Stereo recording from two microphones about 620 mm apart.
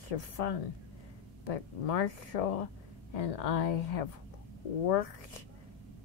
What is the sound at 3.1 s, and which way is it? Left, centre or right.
A woman's voice, left.